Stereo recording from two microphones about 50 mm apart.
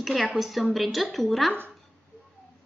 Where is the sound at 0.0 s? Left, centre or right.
Centre.